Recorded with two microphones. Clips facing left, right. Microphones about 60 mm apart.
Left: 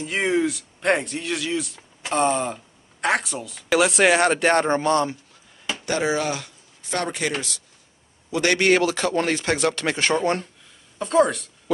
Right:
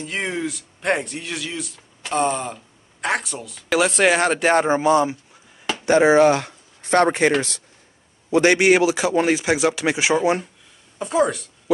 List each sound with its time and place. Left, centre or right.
0.0 s speech: centre
5.9 s speech: right
8.3 s a man's voice: right
8.5 s speech: centre